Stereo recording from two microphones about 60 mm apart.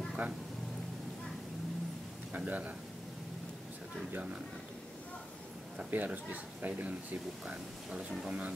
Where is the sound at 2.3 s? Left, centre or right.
Right.